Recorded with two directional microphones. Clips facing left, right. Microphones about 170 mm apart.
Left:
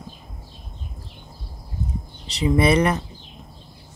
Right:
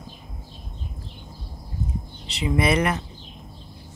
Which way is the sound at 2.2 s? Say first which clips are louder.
Left 4 dB; 35° left (ahead or behind).